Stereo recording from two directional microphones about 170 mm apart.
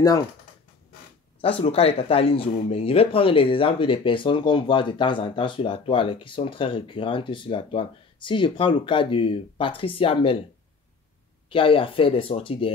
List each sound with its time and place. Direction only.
1.4 s speech: 35° left (ahead or behind)
11.4 s speech: 30° left (ahead or behind)